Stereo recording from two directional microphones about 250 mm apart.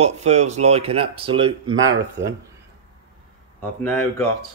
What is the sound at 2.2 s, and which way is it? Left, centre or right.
Speech, right.